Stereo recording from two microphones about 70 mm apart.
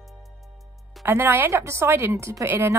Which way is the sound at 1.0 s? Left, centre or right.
Right.